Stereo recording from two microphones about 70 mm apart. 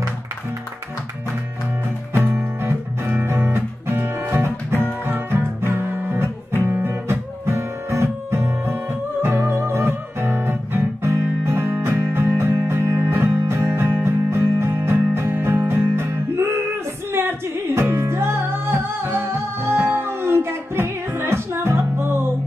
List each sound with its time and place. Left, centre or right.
2.1 s music: right
5.7 s guitar: right
6.6 s music: right